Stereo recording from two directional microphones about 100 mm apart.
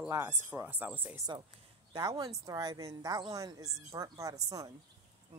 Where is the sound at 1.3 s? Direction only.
50° right (ahead or behind).